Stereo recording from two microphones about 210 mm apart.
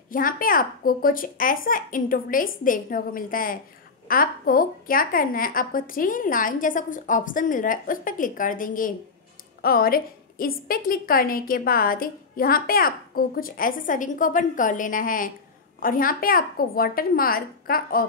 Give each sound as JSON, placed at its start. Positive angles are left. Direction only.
{"t": 0.1, "sound": "a woman's voice", "side_deg": 40}